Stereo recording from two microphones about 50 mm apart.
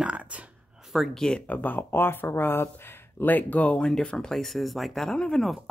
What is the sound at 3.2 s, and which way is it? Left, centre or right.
Speech, left.